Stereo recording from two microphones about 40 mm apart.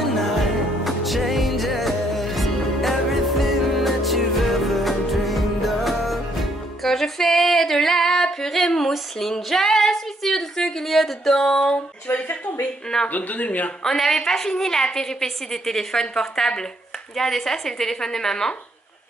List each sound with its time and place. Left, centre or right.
0.0 s music: centre
9.5 s a sound: centre
13.1 s speech: left
13.8 s a woman's voice: centre